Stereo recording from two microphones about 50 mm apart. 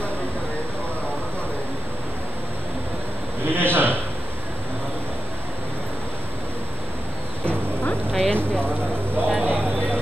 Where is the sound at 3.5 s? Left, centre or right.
Right.